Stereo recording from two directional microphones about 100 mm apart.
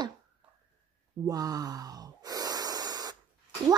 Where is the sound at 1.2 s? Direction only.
40° right (ahead or behind).